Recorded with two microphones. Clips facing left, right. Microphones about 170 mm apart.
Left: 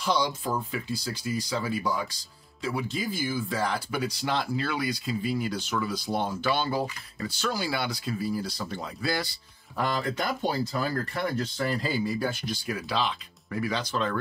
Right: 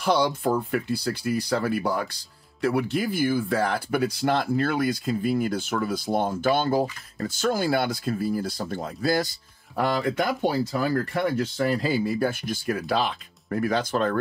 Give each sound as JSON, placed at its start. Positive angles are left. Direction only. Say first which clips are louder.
{"t": 0.0, "sound": "speech", "louder": "right 5 dB", "side_deg": -60}
{"t": 9.8, "sound": "speech", "louder": "right 5 dB", "side_deg": -60}